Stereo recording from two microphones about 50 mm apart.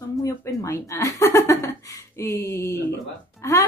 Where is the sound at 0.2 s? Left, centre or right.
Left.